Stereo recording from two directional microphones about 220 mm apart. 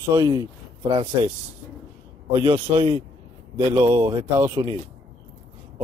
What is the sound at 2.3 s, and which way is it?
Speech, 20° right (ahead or behind).